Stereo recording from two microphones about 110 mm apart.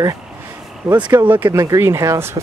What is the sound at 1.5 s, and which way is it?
Speech, 30° right (ahead or behind).